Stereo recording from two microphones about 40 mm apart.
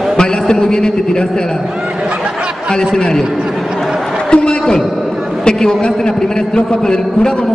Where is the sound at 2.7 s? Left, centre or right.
Centre.